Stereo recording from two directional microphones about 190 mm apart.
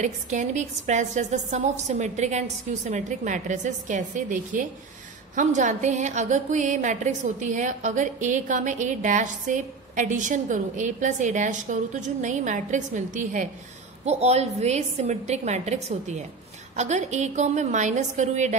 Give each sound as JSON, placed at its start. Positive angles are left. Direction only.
{"t": 0.0, "sound": "a woman's voice", "side_deg": -40}